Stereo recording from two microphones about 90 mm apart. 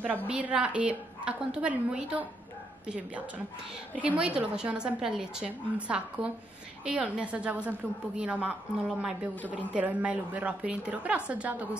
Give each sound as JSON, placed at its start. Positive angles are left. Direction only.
{"t": 0.3, "sound": "a woman's voice", "side_deg": -15}
{"t": 3.9, "sound": "a woman's voice", "side_deg": -15}